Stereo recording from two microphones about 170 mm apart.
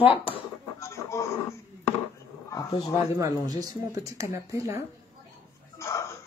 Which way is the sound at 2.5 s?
25° left (ahead or behind).